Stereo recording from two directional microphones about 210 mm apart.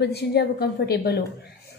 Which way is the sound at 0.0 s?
50° left (ahead or behind).